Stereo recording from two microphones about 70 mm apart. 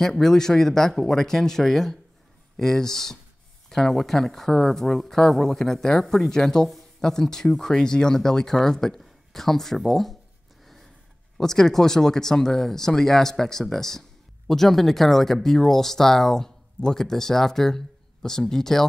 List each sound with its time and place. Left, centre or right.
0.0 s speech: centre
11.3 s speech: centre